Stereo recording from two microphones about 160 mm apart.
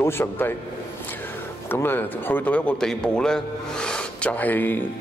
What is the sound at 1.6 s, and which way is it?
A man's voice, 15° left (ahead or behind).